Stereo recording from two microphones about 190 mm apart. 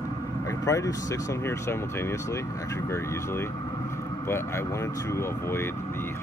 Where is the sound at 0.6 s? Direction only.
15° left (ahead or behind).